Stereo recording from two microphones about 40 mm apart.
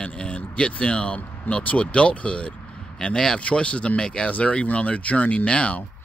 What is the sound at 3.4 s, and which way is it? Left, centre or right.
Speech, left.